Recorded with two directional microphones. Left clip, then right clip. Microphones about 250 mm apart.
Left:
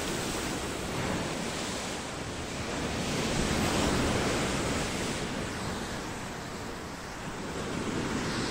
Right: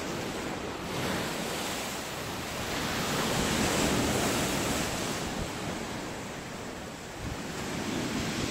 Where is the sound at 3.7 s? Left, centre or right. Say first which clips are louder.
Right 1 dB; right.